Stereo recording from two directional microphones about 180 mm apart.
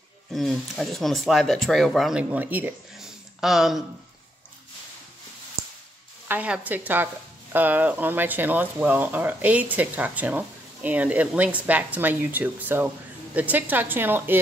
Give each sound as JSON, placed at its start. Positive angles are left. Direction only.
{"t": 0.3, "sound": "speech", "side_deg": 0}
{"t": 6.2, "sound": "speech", "side_deg": -10}